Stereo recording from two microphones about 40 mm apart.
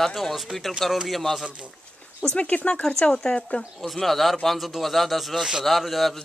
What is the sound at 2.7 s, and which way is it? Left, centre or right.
Speech, centre.